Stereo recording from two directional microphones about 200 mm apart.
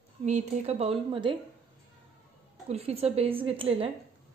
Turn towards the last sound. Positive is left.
turn(degrees=-25)  # may be behind; listen again after turning